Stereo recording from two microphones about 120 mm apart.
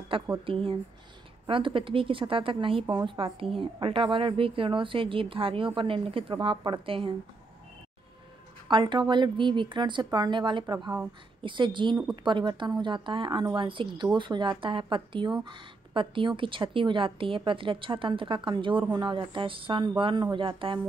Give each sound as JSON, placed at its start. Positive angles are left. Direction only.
{"t": 0.1, "sound": "a woman's voice", "side_deg": -45}
{"t": 8.6, "sound": "a woman's voice", "side_deg": -40}